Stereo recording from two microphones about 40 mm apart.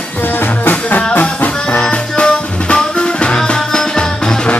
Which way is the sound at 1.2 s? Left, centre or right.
Left.